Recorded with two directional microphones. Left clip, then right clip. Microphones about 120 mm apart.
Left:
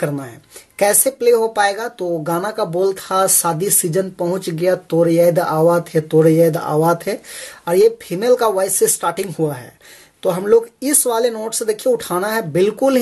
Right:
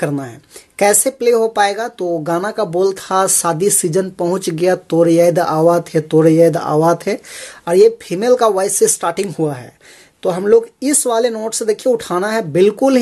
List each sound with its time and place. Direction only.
0.0 s speech: 40° right (ahead or behind)